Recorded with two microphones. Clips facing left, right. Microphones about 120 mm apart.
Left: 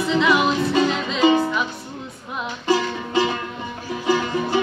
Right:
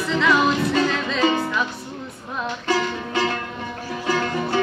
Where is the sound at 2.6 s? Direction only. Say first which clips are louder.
Left 3 dB; 15° left (ahead or behind).